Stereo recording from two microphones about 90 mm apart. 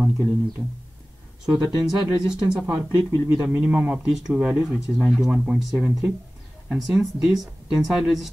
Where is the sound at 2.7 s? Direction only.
20° right (ahead or behind).